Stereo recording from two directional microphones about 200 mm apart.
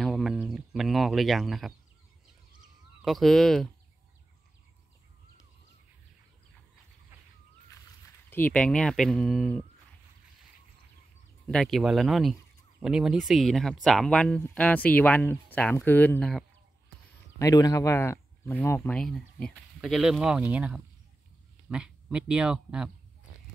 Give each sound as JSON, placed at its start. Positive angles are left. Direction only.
{"t": 0.0, "sound": "a sound", "side_deg": 0}
{"t": 3.0, "sound": "speech", "side_deg": 0}
{"t": 8.3, "sound": "speech", "side_deg": 10}
{"t": 11.4, "sound": "speech", "side_deg": 0}
{"t": 17.4, "sound": "speech", "side_deg": 20}